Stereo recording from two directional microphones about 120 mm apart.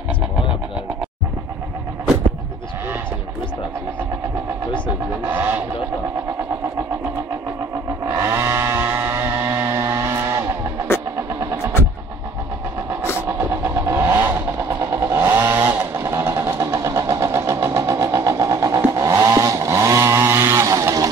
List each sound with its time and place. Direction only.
5.2 s vehicle: 15° right (ahead or behind)
8.1 s chainsaw: 20° right (ahead or behind)
11.1 s vehicle: 25° right (ahead or behind)
13.3 s vehicle: 20° right (ahead or behind)